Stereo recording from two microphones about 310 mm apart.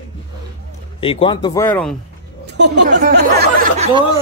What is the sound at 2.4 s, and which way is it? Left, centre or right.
Speech, right.